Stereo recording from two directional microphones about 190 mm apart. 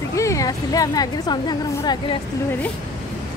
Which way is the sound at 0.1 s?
15° left (ahead or behind).